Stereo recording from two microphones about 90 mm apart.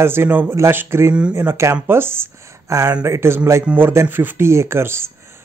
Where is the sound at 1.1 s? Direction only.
10° right (ahead or behind).